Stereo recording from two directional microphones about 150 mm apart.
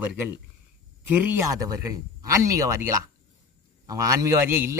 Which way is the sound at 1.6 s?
25° right (ahead or behind).